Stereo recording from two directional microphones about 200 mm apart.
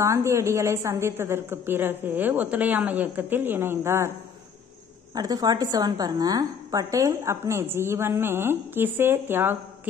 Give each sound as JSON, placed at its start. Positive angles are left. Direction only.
{"t": 0.0, "sound": "a woman's voice", "side_deg": -15}
{"t": 5.1, "sound": "a woman's voice", "side_deg": -20}